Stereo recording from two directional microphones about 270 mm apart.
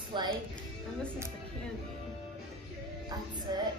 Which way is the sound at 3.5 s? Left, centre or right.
Centre.